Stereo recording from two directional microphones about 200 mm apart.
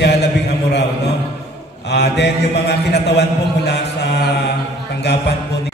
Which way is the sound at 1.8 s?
55° left (ahead or behind).